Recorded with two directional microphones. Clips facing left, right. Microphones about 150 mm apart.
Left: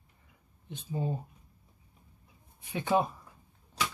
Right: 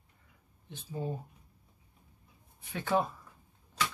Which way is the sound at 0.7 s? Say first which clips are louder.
Left 3 dB; 20° left (ahead or behind).